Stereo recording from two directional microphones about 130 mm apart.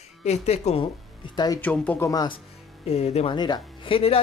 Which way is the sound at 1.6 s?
10° left (ahead or behind).